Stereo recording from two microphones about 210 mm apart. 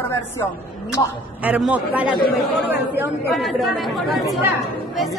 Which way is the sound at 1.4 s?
5° right (ahead or behind).